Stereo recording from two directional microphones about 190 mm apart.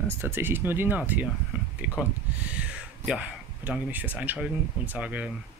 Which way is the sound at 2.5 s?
5° right (ahead or behind).